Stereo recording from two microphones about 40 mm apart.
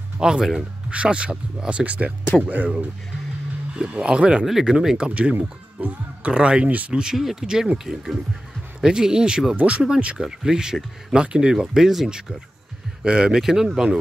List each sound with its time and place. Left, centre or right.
0.2 s speech: centre
0.8 s speech: right
3.9 s speech: right
4.5 s speech: centre
7.2 s speech: centre
9.6 s speech: right
10.2 s speech: centre
13.0 s speech: right
13.4 s speech: centre